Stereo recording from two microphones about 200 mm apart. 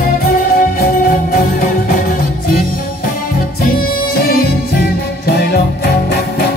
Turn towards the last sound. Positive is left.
turn(degrees=50)  # may be behind; listen again after turning